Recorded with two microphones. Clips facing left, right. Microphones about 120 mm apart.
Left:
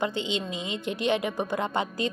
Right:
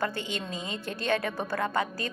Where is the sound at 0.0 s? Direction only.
20° left (ahead or behind).